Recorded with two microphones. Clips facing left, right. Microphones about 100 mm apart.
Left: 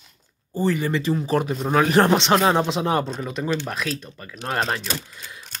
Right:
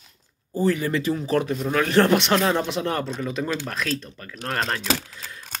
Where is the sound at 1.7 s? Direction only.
20° left (ahead or behind).